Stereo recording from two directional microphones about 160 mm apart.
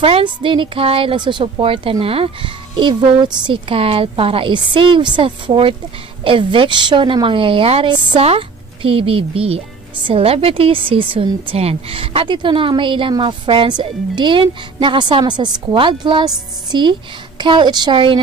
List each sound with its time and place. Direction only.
0.0 s a woman's voice: 35° right (ahead or behind)